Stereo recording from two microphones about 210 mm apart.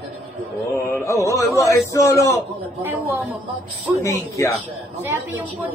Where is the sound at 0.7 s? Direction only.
15° left (ahead or behind).